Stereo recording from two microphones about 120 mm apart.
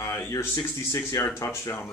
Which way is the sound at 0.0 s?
25° left (ahead or behind).